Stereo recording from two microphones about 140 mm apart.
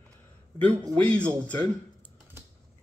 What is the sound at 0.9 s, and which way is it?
Speech, 10° left (ahead or behind).